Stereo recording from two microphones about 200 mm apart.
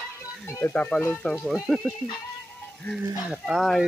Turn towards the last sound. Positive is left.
turn(degrees=0)  # may be behind; listen again after turning